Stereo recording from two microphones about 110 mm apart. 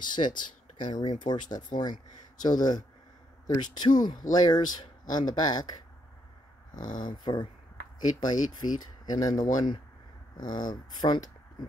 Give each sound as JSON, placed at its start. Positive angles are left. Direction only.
{"t": 0.0, "sound": "speech", "side_deg": 45}